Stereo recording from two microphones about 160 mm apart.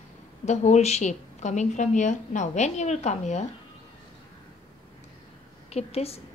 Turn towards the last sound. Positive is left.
turn(degrees=40)  # may be behind; listen again after turning